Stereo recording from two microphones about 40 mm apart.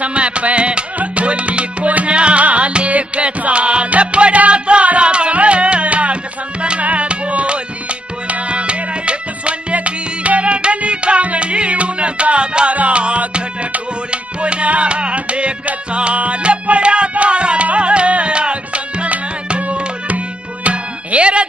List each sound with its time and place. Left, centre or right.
0.0 s music: right